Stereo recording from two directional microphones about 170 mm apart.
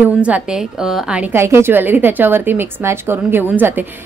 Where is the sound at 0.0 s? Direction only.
5° right (ahead or behind).